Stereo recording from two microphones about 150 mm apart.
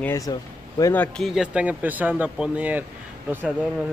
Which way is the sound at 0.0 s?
20° left (ahead or behind).